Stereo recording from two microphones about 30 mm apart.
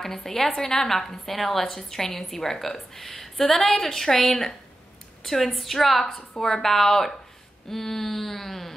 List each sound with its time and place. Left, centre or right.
0.0 s a woman's voice: centre